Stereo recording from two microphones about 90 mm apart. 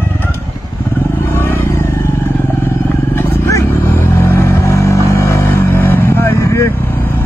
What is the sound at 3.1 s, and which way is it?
Vehicle, 30° left (ahead or behind).